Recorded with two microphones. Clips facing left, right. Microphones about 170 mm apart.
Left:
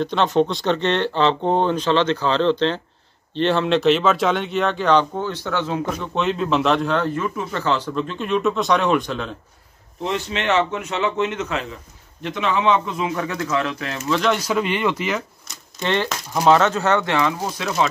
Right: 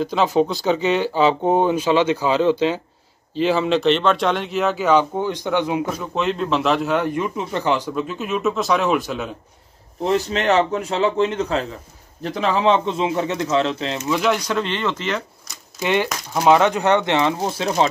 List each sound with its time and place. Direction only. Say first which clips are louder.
0.0 s a man's voice: even; 5° right (ahead or behind)
5.9 s a man's voice: even; 5° right (ahead or behind)
10.0 s a man's voice: right 4 dB; 40° right (ahead or behind); by 14.2 s 20° right (ahead or behind)
14.2 s speech: left 1 dB; centre (ahead or behind)
15.8 s speech: right 2 dB; 10° right (ahead or behind); by 17.8 s 30° right (ahead or behind)